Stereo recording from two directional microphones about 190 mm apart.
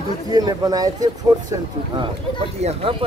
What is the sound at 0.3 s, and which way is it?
Speech, 20° right (ahead or behind).